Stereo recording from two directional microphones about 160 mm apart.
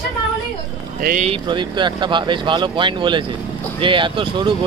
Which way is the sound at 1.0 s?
65° right (ahead or behind).